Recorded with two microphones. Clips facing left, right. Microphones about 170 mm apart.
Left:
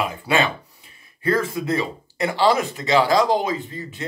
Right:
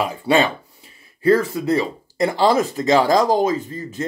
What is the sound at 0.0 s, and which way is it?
Speech, 35° right (ahead or behind).